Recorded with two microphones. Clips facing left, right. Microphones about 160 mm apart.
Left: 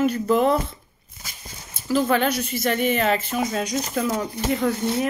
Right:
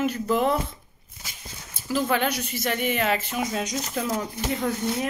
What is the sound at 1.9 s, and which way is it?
Speech, 15° right (ahead or behind).